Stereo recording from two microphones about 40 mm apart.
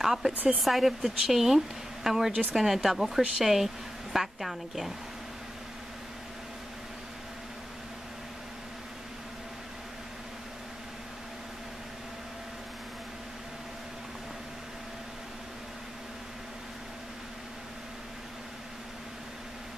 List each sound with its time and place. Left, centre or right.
0.0 s speech: centre
0.3 s speech: right
0.6 s a woman's voice: centre